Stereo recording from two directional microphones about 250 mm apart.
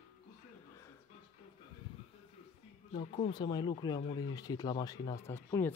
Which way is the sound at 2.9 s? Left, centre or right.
Left.